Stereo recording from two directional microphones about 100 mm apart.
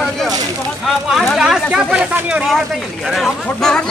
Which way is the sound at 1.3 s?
5° right (ahead or behind).